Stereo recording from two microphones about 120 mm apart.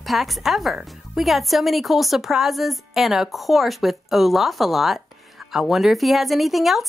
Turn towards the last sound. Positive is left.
turn(degrees=0)  # may be behind; listen again after turning